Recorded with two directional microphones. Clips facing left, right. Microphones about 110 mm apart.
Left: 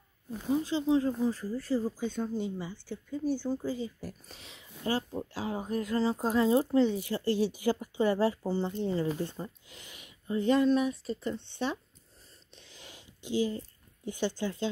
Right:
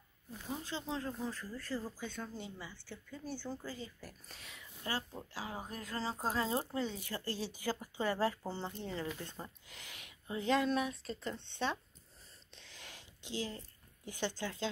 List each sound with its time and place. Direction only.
0.5 s speech: 15° left (ahead or behind)
8.8 s speech: 35° left (ahead or behind)
9.8 s speech: centre (ahead or behind)
12.6 s a sound: 5° left (ahead or behind)
13.3 s speech: 10° left (ahead or behind)